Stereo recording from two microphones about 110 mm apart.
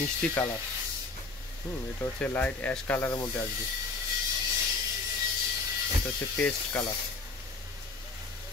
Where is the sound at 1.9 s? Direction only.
15° left (ahead or behind).